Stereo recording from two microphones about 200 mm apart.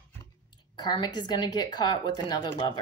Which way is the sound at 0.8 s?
20° left (ahead or behind).